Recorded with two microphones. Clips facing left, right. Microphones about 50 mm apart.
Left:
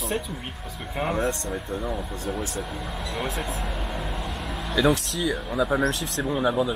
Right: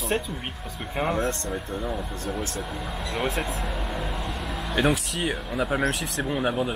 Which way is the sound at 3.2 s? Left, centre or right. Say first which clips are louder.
Right 3 dB; centre.